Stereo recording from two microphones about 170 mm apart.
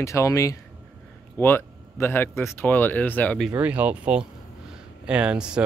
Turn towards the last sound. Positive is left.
turn(degrees=-5)  # may be behind; listen again after turning